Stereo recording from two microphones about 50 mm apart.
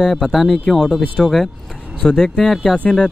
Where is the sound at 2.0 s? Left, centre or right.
Centre.